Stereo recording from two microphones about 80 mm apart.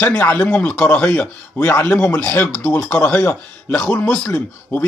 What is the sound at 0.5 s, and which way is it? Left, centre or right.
Speech, centre.